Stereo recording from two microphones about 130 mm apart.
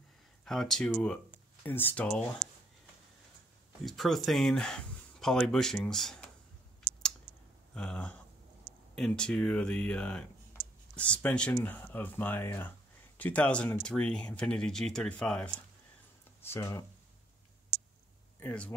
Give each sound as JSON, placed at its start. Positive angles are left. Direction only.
{"t": 0.5, "sound": "speech", "side_deg": 5}
{"t": 3.8, "sound": "speech", "side_deg": 0}
{"t": 7.7, "sound": "speech", "side_deg": 5}
{"t": 16.3, "sound": "speech", "side_deg": 20}
{"t": 18.4, "sound": "speech", "side_deg": 10}